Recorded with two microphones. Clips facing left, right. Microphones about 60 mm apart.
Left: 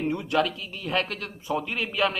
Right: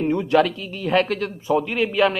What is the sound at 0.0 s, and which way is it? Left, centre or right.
A man's voice, right.